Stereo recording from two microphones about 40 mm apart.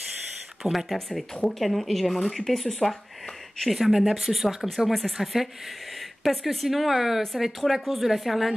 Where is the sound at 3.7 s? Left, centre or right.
Centre.